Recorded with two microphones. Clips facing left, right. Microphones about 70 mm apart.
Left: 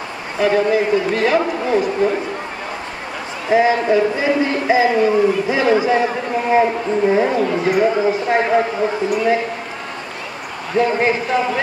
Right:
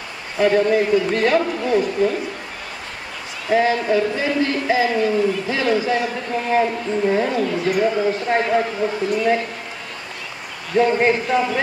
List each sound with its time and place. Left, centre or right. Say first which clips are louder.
0.5 s a man's voice: left 1 dB; centre
3.4 s speech: left 3 dB; centre
9.1 s speech: left 1 dB; centre
10.8 s a man's voice: even; centre